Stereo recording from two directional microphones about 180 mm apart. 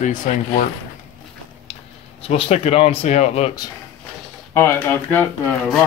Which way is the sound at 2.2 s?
30° left (ahead or behind).